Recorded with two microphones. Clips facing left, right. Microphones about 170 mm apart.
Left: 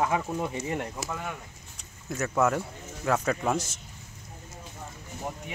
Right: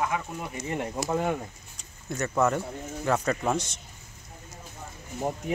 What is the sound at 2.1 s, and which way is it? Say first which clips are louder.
Speech: even; 5° left (ahead or behind).